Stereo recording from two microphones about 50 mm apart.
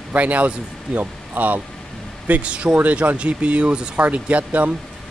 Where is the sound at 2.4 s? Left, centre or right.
Right.